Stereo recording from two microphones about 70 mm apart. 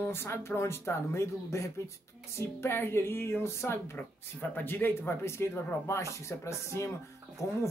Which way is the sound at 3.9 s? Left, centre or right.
Left.